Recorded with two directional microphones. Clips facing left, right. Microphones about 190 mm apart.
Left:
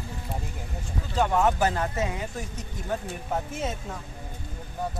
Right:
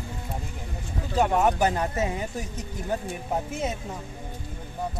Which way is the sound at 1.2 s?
20° right (ahead or behind).